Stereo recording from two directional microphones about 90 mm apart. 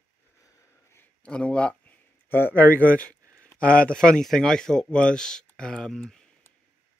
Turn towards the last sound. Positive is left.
turn(degrees=10)  # may be behind; listen again after turning